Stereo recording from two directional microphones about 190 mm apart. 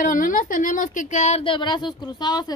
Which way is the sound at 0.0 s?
45° left (ahead or behind).